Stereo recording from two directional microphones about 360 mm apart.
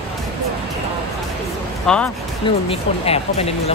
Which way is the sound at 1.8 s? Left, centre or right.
Centre.